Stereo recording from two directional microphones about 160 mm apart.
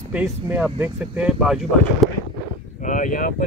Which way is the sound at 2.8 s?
55° left (ahead or behind).